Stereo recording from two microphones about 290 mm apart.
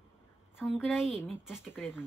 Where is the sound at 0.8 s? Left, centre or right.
Centre.